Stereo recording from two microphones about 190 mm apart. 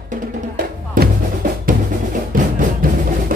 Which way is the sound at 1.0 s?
45° right (ahead or behind).